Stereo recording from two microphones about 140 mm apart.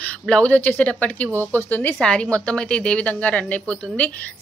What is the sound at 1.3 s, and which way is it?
Speech, 20° right (ahead or behind).